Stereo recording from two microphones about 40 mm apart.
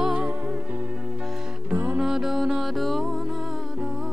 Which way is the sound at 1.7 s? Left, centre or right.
Right.